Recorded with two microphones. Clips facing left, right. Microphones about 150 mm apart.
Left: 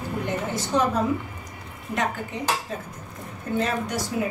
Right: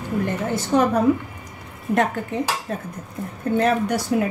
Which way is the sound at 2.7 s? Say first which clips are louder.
Right 5 dB; 60° right (ahead or behind).